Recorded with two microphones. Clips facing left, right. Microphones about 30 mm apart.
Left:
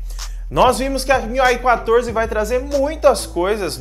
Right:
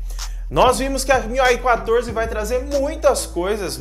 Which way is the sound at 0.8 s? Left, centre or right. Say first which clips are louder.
Left 2 dB; left.